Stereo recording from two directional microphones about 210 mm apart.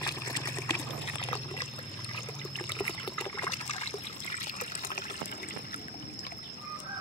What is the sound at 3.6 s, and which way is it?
Trickle, 30° left (ahead or behind).